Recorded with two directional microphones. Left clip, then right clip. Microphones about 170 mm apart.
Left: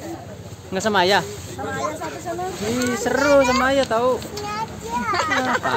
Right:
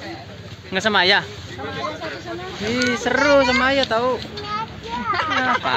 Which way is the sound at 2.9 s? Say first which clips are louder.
Even; centre (ahead or behind).